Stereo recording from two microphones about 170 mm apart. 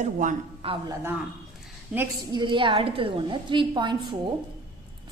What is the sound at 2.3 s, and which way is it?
A woman's voice, 25° right (ahead or behind).